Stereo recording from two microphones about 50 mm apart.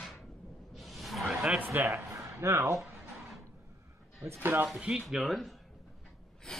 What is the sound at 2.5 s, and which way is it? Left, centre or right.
Speech, right.